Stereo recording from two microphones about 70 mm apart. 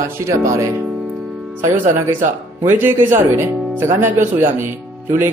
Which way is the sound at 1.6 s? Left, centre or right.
Right.